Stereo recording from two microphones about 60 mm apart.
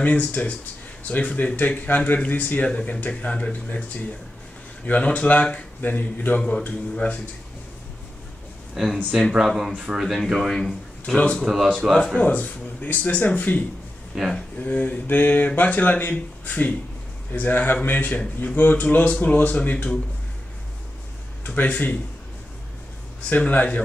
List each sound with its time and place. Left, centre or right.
0.0 s speech: left
8.8 s speech: centre
11.1 s speech: centre
11.4 s speech: centre
12.2 s a man's voice: left
21.5 s speech: left
23.3 s speech: left